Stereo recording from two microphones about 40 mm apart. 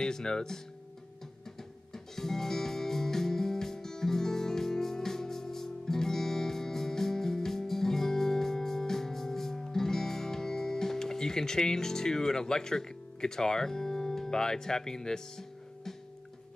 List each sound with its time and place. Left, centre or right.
0.0 s speech: centre
2.1 s music: centre